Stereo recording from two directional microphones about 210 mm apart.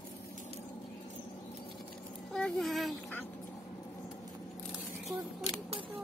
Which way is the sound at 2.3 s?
Centre (ahead or behind).